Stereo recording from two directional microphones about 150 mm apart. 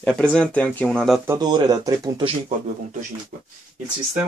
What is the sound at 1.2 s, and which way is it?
Speech, 25° right (ahead or behind).